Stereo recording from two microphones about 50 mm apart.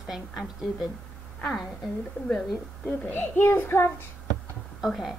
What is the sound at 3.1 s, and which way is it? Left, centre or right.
Speech, left.